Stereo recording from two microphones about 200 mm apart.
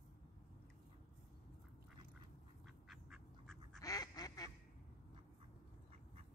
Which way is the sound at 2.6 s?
Centre (ahead or behind).